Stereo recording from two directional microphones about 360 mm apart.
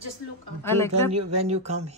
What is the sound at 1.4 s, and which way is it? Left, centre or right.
Speech, centre.